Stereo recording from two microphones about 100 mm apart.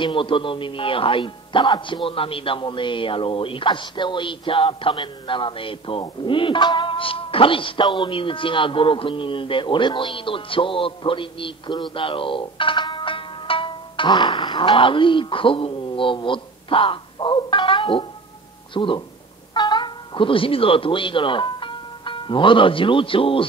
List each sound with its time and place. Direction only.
0.0 s speech: 60° left (ahead or behind)